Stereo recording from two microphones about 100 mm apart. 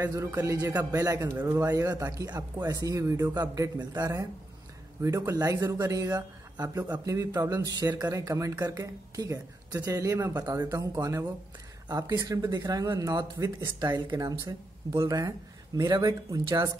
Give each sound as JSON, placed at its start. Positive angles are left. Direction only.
{"t": 0.0, "sound": "speech", "side_deg": -30}
{"t": 5.3, "sound": "speech", "side_deg": -35}